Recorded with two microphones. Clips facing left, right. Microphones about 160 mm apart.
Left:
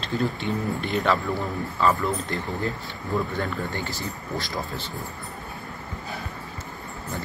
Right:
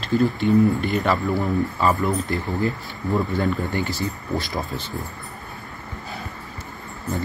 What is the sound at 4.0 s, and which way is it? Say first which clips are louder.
Speech: right 5 dB; 20° right (ahead or behind).